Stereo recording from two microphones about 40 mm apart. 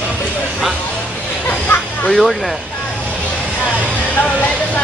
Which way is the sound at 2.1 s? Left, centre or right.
Centre.